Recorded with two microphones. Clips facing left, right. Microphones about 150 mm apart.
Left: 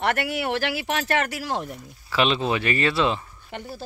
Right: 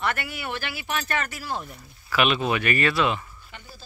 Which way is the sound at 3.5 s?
65° left (ahead or behind).